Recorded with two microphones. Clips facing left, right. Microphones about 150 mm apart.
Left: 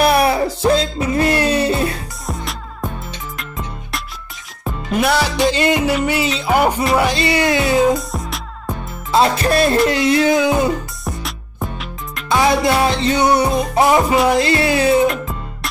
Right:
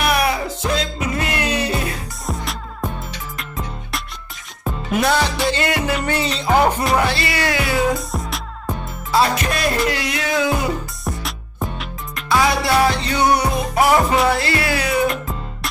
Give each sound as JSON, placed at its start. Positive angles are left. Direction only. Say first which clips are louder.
{"t": 0.0, "sound": "music", "louder": "left 5 dB", "side_deg": 30}
{"t": 2.2, "sound": "music", "louder": "even", "side_deg": 0}
{"t": 5.6, "sound": "music", "louder": "left 5 dB", "side_deg": 20}
{"t": 5.9, "sound": "music", "louder": "left 3 dB", "side_deg": 5}
{"t": 7.0, "sound": "music", "louder": "left 4 dB", "side_deg": 20}
{"t": 8.1, "sound": "music", "louder": "even", "side_deg": 0}
{"t": 9.1, "sound": "music", "louder": "left 4 dB", "side_deg": 25}
{"t": 11.1, "sound": "music", "louder": "even", "side_deg": 0}
{"t": 12.3, "sound": "music", "louder": "left 3 dB", "side_deg": 20}